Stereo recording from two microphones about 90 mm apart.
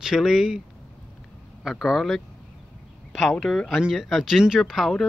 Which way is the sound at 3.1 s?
Centre (ahead or behind).